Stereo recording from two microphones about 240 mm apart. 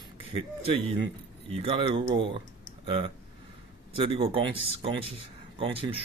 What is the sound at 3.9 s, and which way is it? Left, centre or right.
Speech, right.